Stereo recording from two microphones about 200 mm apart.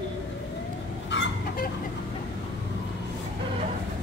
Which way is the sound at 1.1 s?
65° left (ahead or behind).